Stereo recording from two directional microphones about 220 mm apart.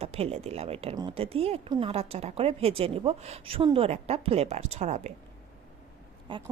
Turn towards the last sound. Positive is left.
turn(degrees=-20)  # may be behind; listen again after turning